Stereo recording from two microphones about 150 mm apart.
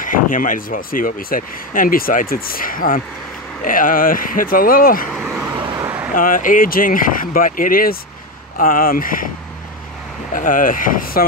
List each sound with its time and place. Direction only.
0.0 s speech: 65° left (ahead or behind)
5.1 s vehicle: centre (ahead or behind)
6.1 s speech: 65° left (ahead or behind)
10.3 s speech: 65° left (ahead or behind)